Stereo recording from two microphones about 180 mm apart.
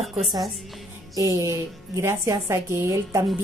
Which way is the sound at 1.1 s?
20° right (ahead or behind).